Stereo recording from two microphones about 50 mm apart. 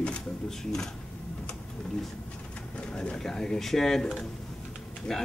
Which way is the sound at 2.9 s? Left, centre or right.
Centre.